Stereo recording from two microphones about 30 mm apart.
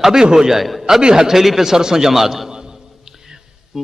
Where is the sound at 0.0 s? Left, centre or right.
Centre.